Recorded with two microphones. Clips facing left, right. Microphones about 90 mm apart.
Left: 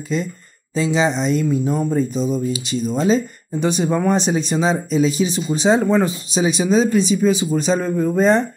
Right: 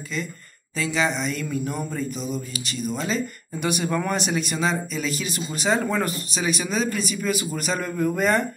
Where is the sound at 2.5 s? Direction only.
45° right (ahead or behind).